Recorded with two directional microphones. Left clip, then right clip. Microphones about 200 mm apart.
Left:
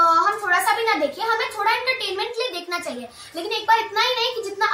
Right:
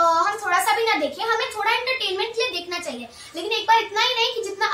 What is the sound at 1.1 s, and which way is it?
A child's voice, 10° right (ahead or behind).